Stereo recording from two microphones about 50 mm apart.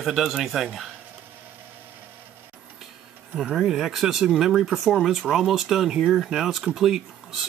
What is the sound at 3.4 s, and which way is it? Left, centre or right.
Speech, centre.